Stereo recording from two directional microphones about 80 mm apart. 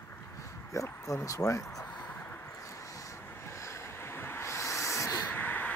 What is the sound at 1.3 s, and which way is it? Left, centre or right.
Speech, left.